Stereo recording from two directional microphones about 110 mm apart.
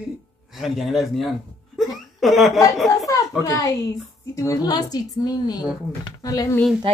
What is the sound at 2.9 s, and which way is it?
Speech, 30° left (ahead or behind).